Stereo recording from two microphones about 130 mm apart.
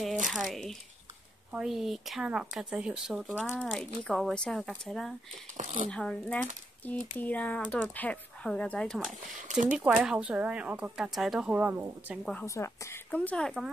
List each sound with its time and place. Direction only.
0.3 s speech: centre (ahead or behind)
5.6 s speech: 65° right (ahead or behind)
5.9 s speech: 5° left (ahead or behind)
9.4 s speech: 80° right
9.8 s speech: 10° right (ahead or behind)
12.4 s a woman's voice: 20° left (ahead or behind)
13.1 s speech: 10° left (ahead or behind)